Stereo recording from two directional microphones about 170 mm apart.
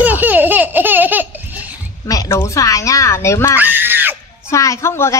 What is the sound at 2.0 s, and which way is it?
Speech, 20° left (ahead or behind).